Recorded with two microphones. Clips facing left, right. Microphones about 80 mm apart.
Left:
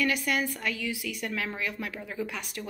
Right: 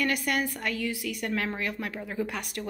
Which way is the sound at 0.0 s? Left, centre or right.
Right.